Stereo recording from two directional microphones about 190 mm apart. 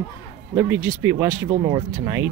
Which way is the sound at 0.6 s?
10° right (ahead or behind).